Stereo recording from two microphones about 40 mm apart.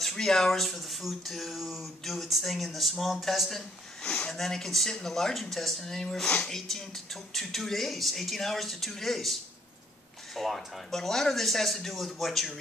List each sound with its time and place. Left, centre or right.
0.0 s speech: centre
4.0 s speech: left
4.3 s speech: centre